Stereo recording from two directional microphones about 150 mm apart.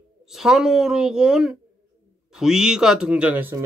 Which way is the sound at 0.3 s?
5° right (ahead or behind).